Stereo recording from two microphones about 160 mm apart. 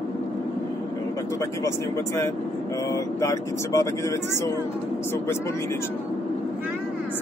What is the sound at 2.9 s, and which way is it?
Speech, 20° left (ahead or behind).